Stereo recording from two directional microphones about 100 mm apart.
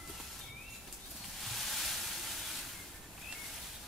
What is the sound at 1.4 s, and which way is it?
Hiss, centre (ahead or behind).